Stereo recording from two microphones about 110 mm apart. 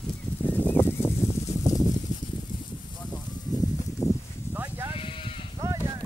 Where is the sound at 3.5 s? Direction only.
35° left (ahead or behind).